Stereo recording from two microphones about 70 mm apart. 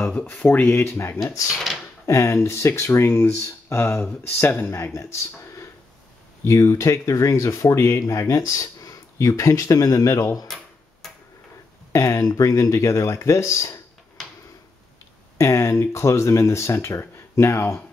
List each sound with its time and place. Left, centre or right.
0.0 s speech: centre
0.5 s speech: left
1.5 s speech: centre
2.0 s speech: left
8.0 s speech: left
11.9 s speech: left
15.3 s speech: left